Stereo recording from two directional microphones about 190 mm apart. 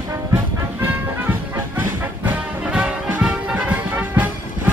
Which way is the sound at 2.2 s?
10° right (ahead or behind).